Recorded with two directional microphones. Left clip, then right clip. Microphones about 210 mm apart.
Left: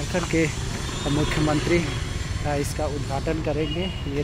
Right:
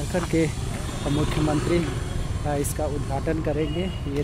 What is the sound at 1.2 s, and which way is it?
Speech, 50° right (ahead or behind).